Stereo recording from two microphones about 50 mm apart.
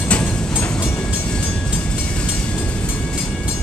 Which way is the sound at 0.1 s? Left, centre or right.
Left.